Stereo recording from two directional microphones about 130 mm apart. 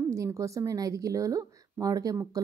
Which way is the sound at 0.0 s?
25° right (ahead or behind).